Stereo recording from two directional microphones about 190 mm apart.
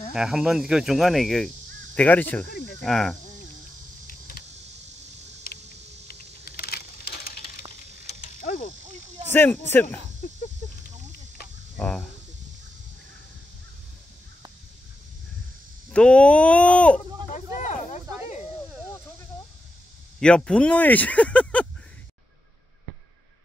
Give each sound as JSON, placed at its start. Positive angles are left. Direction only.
{"t": 0.1, "sound": "speech", "side_deg": -5}
{"t": 4.1, "sound": "vehicle", "side_deg": 50}
{"t": 6.0, "sound": "a sound", "side_deg": 50}
{"t": 8.2, "sound": "insect", "side_deg": 45}
{"t": 9.3, "sound": "speech", "side_deg": 10}
{"t": 10.2, "sound": "a sound", "side_deg": 45}
{"t": 11.7, "sound": "cricket", "side_deg": 5}
{"t": 15.9, "sound": "speech", "side_deg": 5}
{"t": 17.6, "sound": "a sound", "side_deg": 40}
{"t": 20.2, "sound": "speech", "side_deg": 5}